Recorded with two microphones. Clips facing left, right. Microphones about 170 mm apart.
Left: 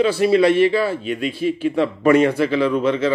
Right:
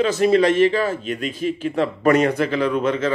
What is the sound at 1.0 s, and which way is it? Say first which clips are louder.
A man's voice: left 2 dB; 40° right (ahead or behind).